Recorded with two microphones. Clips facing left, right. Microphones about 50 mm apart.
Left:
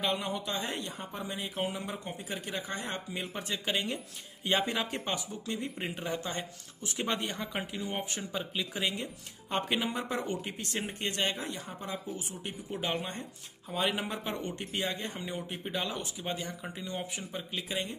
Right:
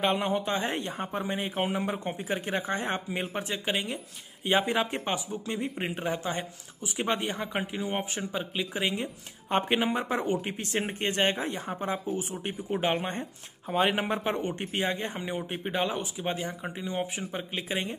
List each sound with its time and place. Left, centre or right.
0.0 s speech: right
10.1 s speech: centre
10.4 s speech: right